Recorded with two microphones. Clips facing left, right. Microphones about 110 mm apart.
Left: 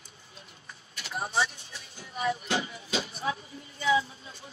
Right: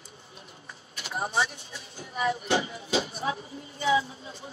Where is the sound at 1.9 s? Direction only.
30° right (ahead or behind).